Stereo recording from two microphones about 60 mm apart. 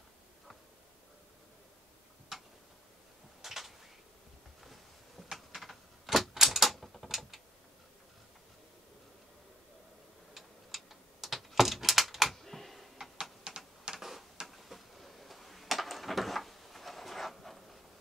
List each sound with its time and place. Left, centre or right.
2.3 s tick-tock: centre
3.4 s a sound: centre
5.3 s typewriter: centre
10.3 s tick-tock: centre
13.5 s typing: centre
13.9 s tick-tock: centre
14.5 s a sound: centre